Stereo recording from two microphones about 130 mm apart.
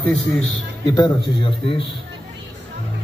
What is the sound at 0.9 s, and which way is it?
Speech, 35° left (ahead or behind).